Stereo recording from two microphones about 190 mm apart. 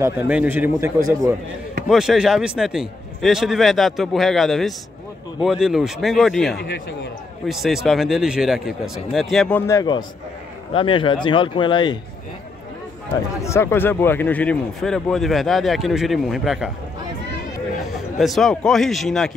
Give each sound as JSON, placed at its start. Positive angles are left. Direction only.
{"t": 0.0, "sound": "a man's voice", "side_deg": -10}
{"t": 1.9, "sound": "speech", "side_deg": 0}
{"t": 13.4, "sound": "speech", "side_deg": 15}
{"t": 18.1, "sound": "speech", "side_deg": 0}